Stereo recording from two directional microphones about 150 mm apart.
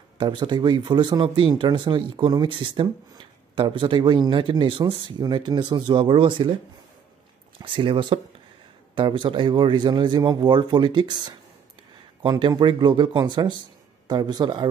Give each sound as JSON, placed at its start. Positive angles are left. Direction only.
{"t": 0.2, "sound": "speech", "side_deg": -30}
{"t": 7.6, "sound": "speech", "side_deg": -35}